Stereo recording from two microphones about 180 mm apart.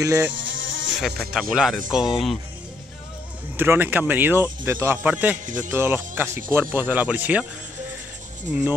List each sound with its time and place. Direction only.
0.0 s speech: 15° right (ahead or behind)
0.3 s insect: 90° right
1.3 s speech: 5° right (ahead or behind)
3.5 s speech: 10° right (ahead or behind)